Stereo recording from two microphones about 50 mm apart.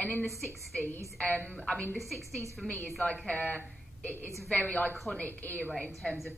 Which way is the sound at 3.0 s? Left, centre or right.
Left.